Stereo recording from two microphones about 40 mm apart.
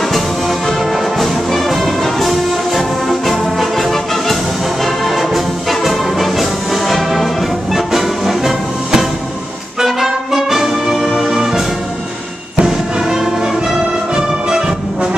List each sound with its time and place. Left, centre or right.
0.1 s music: centre
9.8 s brass instrument: centre
11.2 s music: centre
12.6 s music: centre
14.1 s brass instrument: centre